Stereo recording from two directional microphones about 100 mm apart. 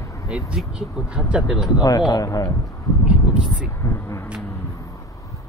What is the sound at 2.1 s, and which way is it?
Speech, 35° left (ahead or behind).